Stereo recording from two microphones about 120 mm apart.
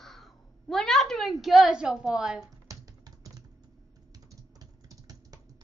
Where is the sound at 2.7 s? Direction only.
30° right (ahead or behind).